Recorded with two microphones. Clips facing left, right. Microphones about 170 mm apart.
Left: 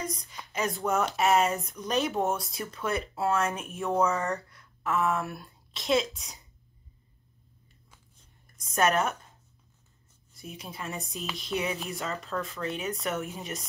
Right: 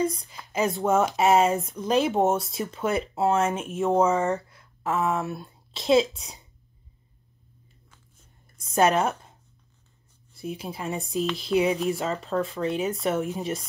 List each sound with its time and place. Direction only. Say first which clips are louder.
0.0 s speech: right 10 dB; 30° right (ahead or behind)
8.5 s a woman's voice: right 4 dB; 30° right (ahead or behind)
10.3 s speech: right 8 dB; 30° right (ahead or behind)